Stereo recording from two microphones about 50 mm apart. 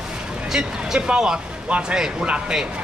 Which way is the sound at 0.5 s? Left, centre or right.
Centre.